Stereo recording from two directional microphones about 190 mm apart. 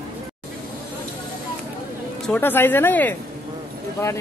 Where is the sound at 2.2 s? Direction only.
10° left (ahead or behind).